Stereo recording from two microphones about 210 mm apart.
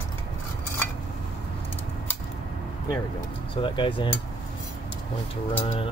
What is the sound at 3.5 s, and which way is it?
Cutlery, 25° left (ahead or behind).